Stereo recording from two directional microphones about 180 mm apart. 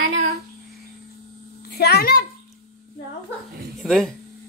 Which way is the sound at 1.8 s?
60° left (ahead or behind).